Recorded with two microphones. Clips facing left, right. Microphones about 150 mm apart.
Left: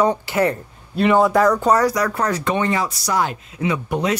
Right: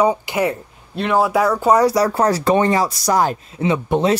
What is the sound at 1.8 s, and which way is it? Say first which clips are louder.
Speech: right 4 dB; 30° right (ahead or behind).